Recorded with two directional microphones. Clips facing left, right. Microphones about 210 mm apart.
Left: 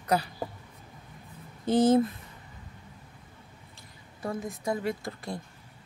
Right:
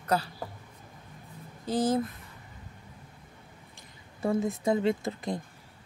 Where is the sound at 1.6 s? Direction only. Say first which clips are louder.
Left 5 dB; 25° left (ahead or behind).